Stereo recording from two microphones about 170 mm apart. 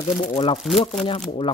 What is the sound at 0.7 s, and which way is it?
Speech, centre (ahead or behind).